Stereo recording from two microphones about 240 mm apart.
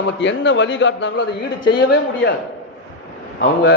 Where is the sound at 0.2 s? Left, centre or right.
Left.